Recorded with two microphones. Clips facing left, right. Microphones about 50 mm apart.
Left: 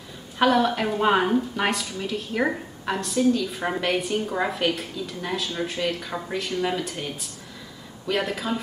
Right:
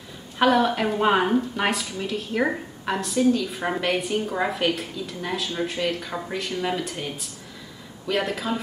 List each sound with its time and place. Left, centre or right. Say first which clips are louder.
0.4 s a woman's voice: right 1 dB; centre